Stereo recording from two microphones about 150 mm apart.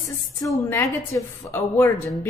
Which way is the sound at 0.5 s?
20° left (ahead or behind).